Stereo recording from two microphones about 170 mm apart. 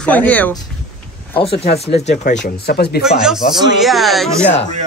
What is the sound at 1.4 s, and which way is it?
Speech, 35° left (ahead or behind).